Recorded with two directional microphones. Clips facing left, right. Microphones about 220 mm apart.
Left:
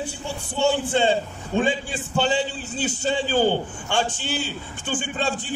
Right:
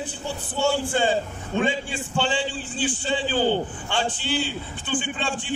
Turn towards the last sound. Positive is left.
turn(degrees=40)  # may be behind; listen again after turning